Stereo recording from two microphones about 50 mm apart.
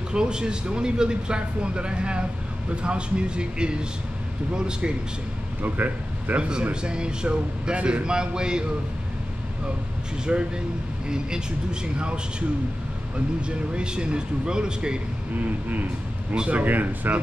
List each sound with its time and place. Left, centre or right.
0.1 s speech: centre
5.6 s speech: right; by 8.6 s centre
10.3 s speech: centre
13.7 s speech: centre
15.4 s a man's voice: right